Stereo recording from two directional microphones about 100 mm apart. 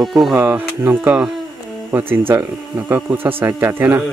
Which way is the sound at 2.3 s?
25° right (ahead or behind).